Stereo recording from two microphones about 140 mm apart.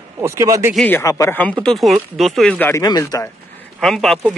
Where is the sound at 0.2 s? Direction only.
20° right (ahead or behind).